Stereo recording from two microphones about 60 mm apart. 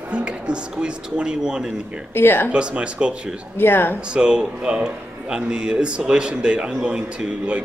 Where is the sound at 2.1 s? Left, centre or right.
Left.